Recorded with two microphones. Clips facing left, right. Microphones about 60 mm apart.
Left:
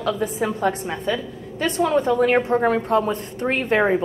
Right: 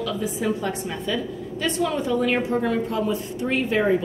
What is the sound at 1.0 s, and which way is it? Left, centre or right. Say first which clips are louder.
Speech: left 1 dB; left.